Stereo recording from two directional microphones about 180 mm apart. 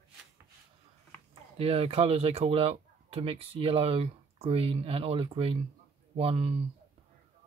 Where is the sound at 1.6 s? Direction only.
35° right (ahead or behind).